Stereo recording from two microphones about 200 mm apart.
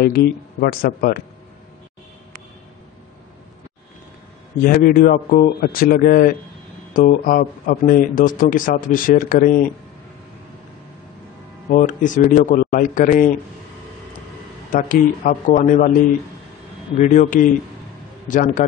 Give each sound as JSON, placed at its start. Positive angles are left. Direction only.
{"t": 0.0, "sound": "speech", "side_deg": 50}
{"t": 4.6, "sound": "speech", "side_deg": 45}
{"t": 11.7, "sound": "a man's voice", "side_deg": 40}
{"t": 14.7, "sound": "speech", "side_deg": 40}
{"t": 17.0, "sound": "a man's voice", "side_deg": 40}